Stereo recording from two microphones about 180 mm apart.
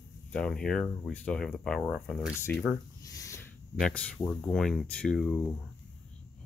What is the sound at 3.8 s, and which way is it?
Speech, 5° left (ahead or behind).